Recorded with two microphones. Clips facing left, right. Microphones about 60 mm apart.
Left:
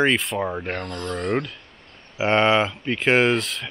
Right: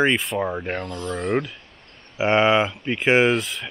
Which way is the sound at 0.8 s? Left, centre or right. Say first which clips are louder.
Even; left.